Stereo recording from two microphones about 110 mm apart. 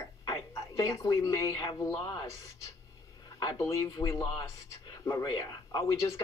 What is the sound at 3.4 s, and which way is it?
Speech, 35° left (ahead or behind).